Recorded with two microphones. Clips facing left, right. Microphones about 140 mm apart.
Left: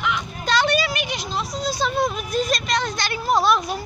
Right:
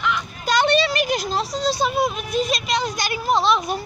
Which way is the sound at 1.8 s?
5° right (ahead or behind).